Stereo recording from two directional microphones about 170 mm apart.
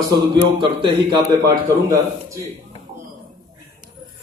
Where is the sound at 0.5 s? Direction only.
30° right (ahead or behind).